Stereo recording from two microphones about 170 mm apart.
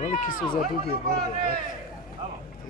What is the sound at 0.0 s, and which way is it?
Run, 45° left (ahead or behind).